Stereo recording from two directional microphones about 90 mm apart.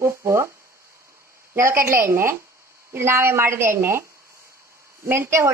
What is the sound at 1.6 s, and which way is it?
A woman's voice, 30° right (ahead or behind).